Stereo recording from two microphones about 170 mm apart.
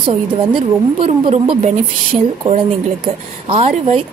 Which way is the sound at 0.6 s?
30° right (ahead or behind).